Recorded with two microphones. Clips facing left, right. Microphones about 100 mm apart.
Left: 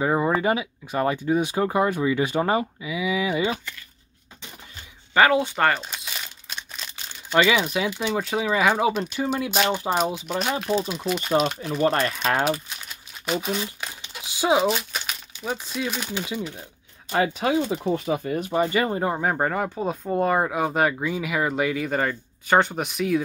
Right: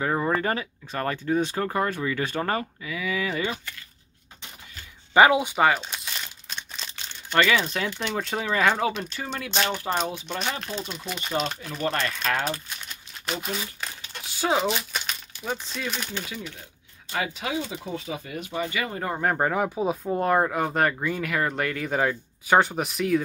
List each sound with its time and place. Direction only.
0.0 s speech: 15° left (ahead or behind)
5.1 s speech: 15° right (ahead or behind)
5.7 s crumpling: centre (ahead or behind)
9.2 s speech: 25° left (ahead or behind); by 11.7 s 5° left (ahead or behind)
11.8 s speech: 35° left (ahead or behind)
12.4 s crumpling: 5° left (ahead or behind)
14.2 s speech: 15° left (ahead or behind)
17.1 s speech: 45° left (ahead or behind)
18.9 s speech: 20° left (ahead or behind)
19.2 s speech: centre (ahead or behind)